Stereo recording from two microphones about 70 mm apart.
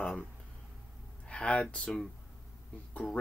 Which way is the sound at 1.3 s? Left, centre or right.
Centre.